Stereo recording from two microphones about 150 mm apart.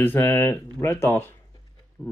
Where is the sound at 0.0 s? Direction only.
15° left (ahead or behind).